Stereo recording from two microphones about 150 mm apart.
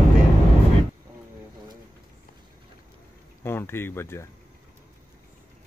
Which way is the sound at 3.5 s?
15° left (ahead or behind).